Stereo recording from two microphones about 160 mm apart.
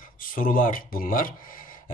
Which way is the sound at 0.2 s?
60° left (ahead or behind).